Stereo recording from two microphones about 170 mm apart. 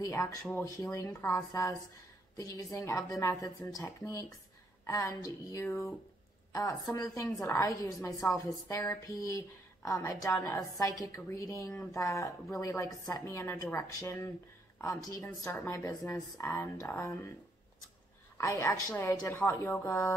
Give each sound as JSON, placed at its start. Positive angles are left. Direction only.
{"t": 0.0, "sound": "a woman's voice", "side_deg": 15}
{"t": 18.4, "sound": "a woman's voice", "side_deg": 15}